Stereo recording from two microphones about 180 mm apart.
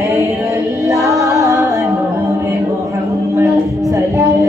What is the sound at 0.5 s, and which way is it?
Music, 15° right (ahead or behind).